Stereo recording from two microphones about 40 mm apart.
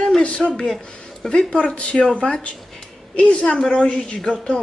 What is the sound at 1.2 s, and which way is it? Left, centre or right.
Speech, centre.